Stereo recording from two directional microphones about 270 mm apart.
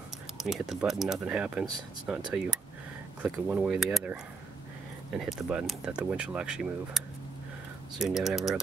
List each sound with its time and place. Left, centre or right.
0.4 s speech: centre
8.0 s speech: centre